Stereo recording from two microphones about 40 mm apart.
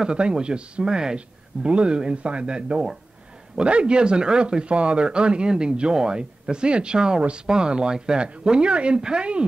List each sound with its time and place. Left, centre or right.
0.0 s speech: right